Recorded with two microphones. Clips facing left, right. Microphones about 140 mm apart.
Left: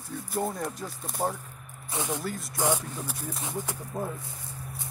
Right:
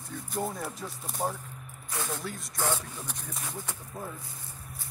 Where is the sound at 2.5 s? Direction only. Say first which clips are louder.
Left 4 dB; 15° left (ahead or behind).